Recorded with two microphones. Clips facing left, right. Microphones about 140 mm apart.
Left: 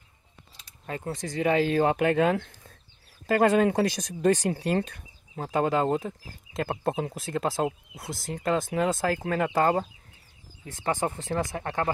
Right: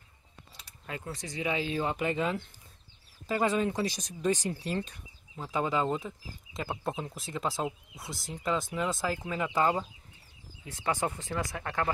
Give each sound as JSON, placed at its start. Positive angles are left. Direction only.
{"t": 0.8, "sound": "speech", "side_deg": 40}
{"t": 1.2, "sound": "speech", "side_deg": 55}
{"t": 3.3, "sound": "speech", "side_deg": 65}
{"t": 8.4, "sound": "speech", "side_deg": 75}
{"t": 11.0, "sound": "speech", "side_deg": 30}